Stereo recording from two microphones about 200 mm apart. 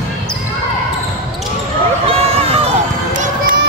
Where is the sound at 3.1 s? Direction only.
40° right (ahead or behind).